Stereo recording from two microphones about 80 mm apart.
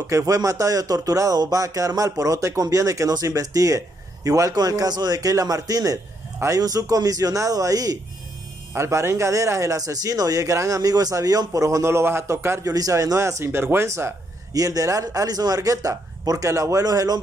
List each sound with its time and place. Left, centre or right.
0.0 s speech: right
8.7 s speech: right
12.6 s speech: right